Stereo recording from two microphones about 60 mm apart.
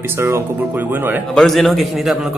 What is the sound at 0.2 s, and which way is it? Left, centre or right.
Speech, right.